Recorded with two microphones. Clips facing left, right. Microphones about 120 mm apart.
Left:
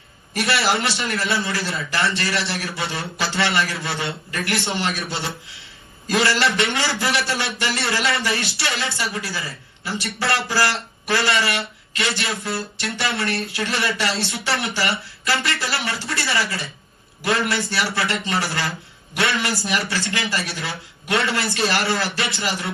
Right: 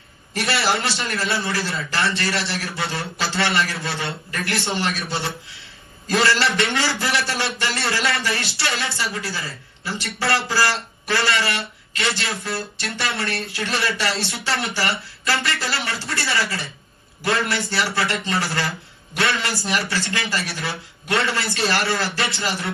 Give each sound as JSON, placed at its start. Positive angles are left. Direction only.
{"t": 0.3, "sound": "a man's voice", "side_deg": 20}